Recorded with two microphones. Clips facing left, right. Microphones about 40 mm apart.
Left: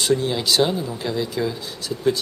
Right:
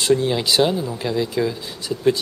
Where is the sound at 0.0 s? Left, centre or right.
Centre.